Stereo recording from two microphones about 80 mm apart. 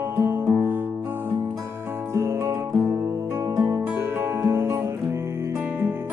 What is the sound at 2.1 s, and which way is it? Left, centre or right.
Music, right.